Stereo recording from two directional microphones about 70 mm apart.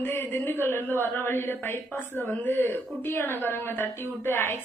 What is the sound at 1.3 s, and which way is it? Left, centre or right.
A woman's voice, left.